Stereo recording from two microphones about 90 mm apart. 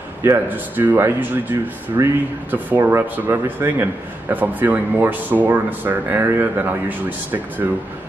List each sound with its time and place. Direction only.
0.5 s a man's voice: 20° right (ahead or behind)